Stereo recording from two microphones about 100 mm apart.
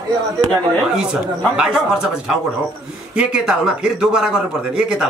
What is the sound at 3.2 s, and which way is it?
A man's voice, 10° right (ahead or behind).